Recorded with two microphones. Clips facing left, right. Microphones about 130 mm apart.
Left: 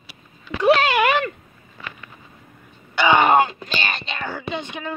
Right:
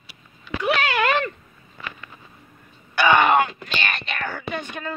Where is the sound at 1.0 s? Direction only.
10° left (ahead or behind).